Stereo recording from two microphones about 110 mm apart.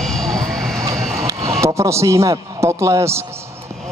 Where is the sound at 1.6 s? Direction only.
25° right (ahead or behind).